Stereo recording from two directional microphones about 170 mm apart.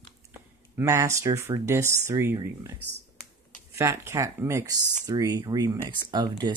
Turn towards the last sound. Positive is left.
turn(degrees=-25)  # may be behind; listen again after turning